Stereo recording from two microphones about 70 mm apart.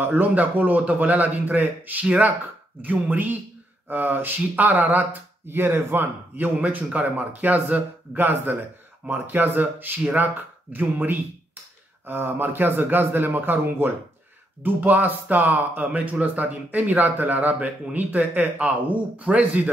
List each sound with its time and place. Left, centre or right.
0.0 s speech: right